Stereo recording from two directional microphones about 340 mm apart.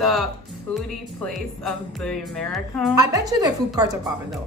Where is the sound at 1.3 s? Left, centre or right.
Centre.